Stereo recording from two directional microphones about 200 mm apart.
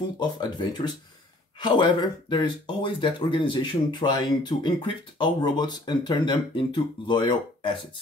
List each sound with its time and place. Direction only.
0.2 s speech: 20° left (ahead or behind)